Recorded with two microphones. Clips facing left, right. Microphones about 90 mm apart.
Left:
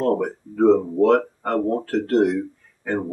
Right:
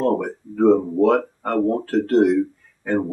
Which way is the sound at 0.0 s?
Centre (ahead or behind).